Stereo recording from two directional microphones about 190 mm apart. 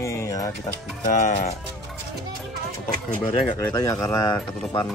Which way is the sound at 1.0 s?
45° left (ahead or behind).